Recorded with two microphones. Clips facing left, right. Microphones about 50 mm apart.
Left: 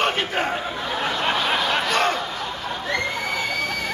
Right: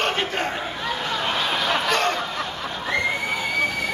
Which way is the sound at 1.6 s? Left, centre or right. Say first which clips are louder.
Left 1 dB; centre.